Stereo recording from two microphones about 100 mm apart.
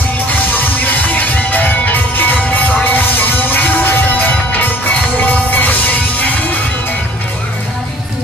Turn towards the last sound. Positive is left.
turn(degrees=15)  # may be behind; listen again after turning